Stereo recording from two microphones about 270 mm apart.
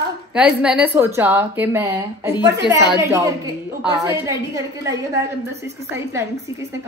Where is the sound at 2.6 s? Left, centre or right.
Centre.